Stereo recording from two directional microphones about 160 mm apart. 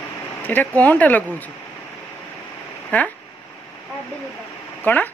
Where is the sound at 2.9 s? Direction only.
10° left (ahead or behind).